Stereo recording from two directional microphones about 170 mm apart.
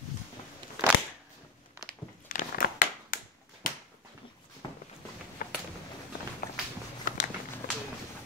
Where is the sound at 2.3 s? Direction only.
55° left (ahead or behind).